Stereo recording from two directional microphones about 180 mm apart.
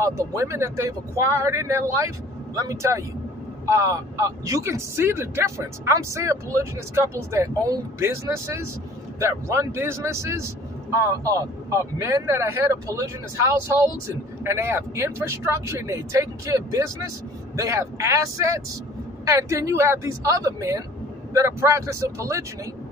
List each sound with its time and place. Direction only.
0.0 s speech: 15° right (ahead or behind)
19.2 s speech: 15° right (ahead or behind)